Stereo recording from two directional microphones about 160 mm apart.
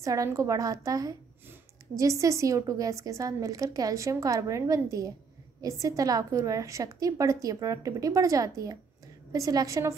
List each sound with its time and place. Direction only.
0.0 s a woman's voice: 20° right (ahead or behind)